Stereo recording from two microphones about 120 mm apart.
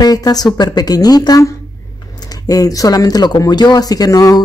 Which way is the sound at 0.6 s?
35° left (ahead or behind).